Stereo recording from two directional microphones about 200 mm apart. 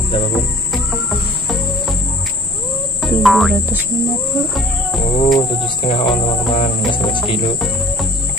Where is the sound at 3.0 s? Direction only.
Centre (ahead or behind).